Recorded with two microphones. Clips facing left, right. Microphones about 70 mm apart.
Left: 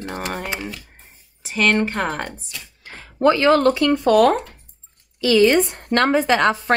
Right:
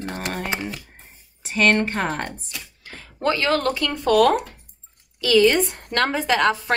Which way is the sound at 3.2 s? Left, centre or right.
Left.